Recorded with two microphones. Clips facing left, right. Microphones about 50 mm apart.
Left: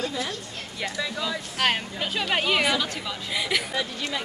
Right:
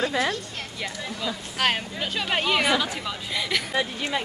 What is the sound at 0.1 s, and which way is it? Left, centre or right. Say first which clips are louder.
Speech: right 6 dB; right.